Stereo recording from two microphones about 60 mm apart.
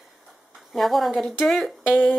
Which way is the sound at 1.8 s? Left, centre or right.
Centre.